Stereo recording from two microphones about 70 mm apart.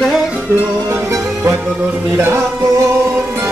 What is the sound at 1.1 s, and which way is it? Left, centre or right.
Music, right.